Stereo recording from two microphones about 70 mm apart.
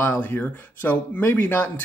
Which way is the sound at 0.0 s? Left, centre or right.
Left.